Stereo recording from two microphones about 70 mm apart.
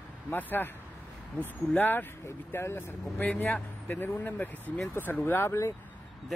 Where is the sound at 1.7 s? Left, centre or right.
Left.